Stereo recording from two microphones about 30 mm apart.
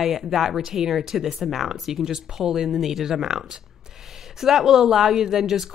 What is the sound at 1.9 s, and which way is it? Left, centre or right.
Speech, centre.